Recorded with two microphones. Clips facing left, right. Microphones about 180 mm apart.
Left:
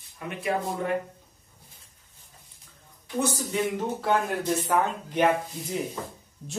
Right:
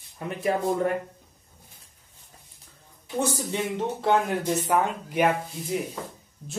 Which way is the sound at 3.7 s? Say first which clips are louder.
Right 2 dB; 25° right (ahead or behind).